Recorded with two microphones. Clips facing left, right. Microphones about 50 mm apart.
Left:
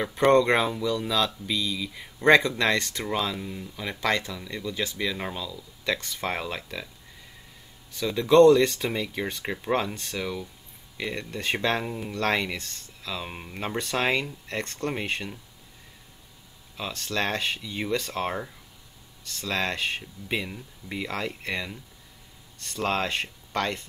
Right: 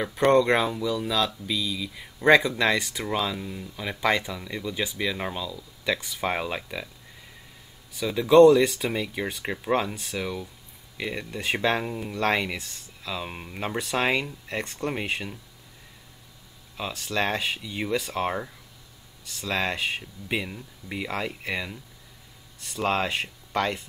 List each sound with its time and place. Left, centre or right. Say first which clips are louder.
0.0 s speech: even; centre
7.9 s speech: right 2 dB; centre
16.7 s speech: right 1 dB; centre